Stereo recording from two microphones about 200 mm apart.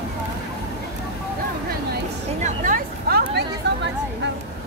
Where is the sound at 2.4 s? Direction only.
45° right (ahead or behind).